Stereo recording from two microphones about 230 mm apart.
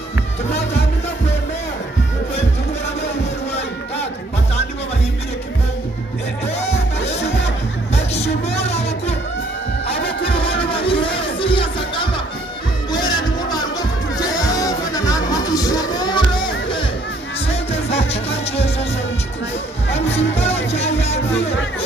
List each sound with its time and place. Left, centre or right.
6.6 s music: left
10.2 s music: left
19.9 s music: left